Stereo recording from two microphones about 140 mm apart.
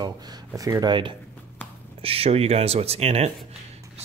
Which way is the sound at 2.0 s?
45° right (ahead or behind).